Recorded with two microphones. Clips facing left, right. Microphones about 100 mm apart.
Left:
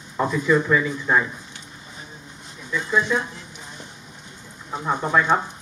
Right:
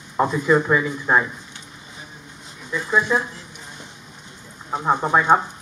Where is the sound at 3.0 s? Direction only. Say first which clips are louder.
Right 2 dB; 15° right (ahead or behind).